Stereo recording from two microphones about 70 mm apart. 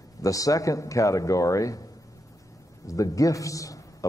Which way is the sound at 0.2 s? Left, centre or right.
Left.